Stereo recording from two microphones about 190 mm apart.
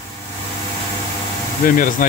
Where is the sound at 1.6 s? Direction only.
45° left (ahead or behind).